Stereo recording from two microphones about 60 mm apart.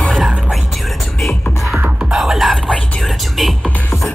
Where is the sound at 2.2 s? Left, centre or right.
Centre.